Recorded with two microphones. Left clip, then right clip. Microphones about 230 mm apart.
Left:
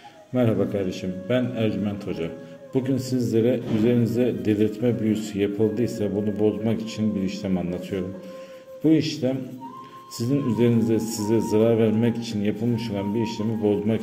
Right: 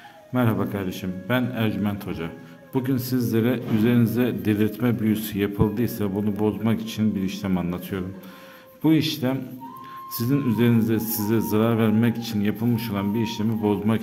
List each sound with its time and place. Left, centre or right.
0.3 s a man's voice: centre